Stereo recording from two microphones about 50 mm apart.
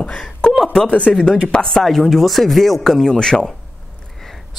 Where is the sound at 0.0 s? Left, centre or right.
Centre.